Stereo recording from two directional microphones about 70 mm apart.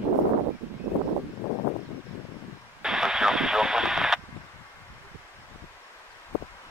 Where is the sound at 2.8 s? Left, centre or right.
Centre.